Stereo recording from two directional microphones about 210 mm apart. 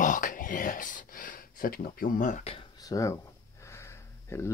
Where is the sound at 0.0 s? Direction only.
40° left (ahead or behind).